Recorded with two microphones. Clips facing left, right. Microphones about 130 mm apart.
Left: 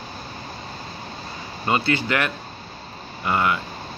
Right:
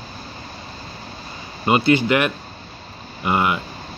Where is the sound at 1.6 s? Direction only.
15° right (ahead or behind).